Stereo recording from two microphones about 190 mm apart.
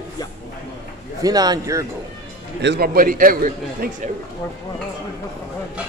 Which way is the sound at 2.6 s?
60° right (ahead or behind).